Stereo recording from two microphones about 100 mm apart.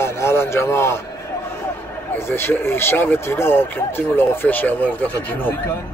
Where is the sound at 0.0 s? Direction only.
25° left (ahead or behind).